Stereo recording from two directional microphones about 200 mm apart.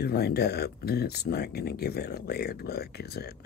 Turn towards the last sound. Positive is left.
turn(degrees=50)  # may be behind; listen again after turning